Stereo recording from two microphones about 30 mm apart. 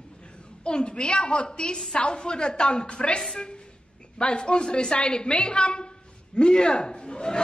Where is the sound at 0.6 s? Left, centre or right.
Left.